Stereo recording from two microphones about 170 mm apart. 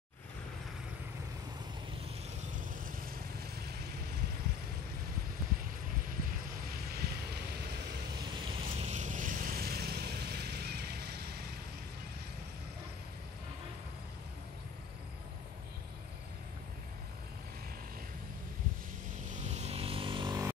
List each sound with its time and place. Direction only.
2.8 s vehicle: 65° right (ahead or behind)
6.0 s vehicle: 60° right (ahead or behind)
8.6 s vehicle: 40° right (ahead or behind); by 11.4 s 70° right (ahead or behind)
19.3 s vehicle: 40° right (ahead or behind)